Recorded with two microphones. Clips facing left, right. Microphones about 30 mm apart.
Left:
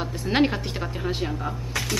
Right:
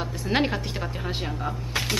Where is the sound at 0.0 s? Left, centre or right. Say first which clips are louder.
Left 2 dB; centre.